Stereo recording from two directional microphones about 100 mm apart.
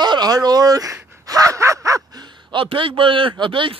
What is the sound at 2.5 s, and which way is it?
Speech, 60° right (ahead or behind).